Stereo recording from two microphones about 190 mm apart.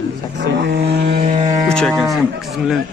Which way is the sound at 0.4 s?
60° right (ahead or behind).